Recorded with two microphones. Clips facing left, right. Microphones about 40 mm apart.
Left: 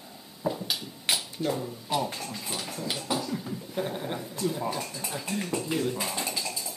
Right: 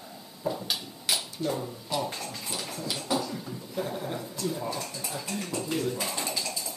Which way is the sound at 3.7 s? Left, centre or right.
Centre.